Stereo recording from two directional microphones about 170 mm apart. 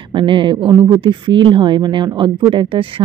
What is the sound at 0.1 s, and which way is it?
Speech, 30° right (ahead or behind).